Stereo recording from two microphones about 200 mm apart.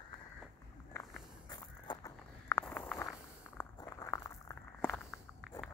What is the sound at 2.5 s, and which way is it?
Walk, 10° left (ahead or behind).